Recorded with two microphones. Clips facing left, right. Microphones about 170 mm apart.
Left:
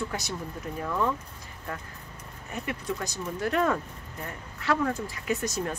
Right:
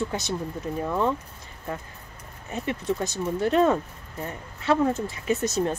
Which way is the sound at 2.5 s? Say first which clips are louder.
Right 5 dB; 25° right (ahead or behind).